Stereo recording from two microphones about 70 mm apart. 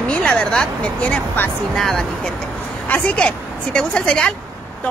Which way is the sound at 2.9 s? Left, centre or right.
Centre.